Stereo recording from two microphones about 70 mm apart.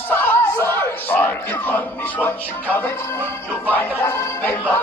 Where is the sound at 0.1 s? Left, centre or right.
Left.